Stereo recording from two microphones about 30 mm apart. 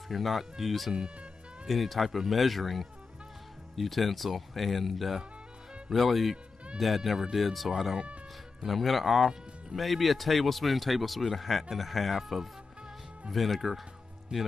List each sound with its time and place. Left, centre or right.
0.1 s speech: centre
14.3 s speech: right